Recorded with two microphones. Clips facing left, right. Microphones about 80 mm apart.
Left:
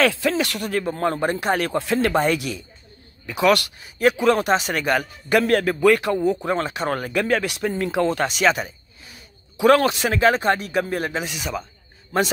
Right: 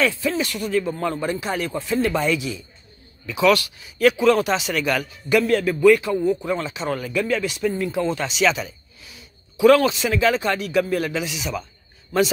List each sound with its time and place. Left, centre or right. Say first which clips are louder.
0.0 s a man's voice: left 2 dB; left
2.1 s a man's voice: left 2 dB; left
3.3 s a man's voice: even; left
5.5 s a man's voice: right 3 dB; left
8.2 s speech: left 1 dB; left